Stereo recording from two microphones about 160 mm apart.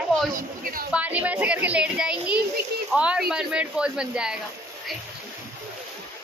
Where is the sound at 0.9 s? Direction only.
10° right (ahead or behind).